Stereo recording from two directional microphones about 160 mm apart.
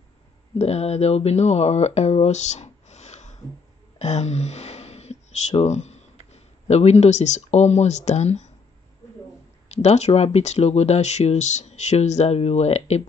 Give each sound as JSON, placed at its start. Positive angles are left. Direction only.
{"t": 0.6, "sound": "speech", "side_deg": 40}
{"t": 9.8, "sound": "speech", "side_deg": 45}